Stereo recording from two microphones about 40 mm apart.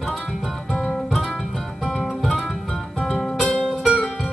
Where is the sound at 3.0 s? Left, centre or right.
Centre.